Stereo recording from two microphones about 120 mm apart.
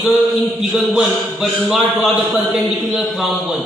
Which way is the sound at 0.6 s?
5° right (ahead or behind).